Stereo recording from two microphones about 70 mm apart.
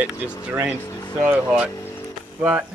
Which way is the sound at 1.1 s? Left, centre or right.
Right.